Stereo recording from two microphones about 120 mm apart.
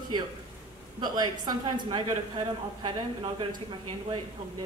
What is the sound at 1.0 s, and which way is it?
A man's voice, 35° right (ahead or behind).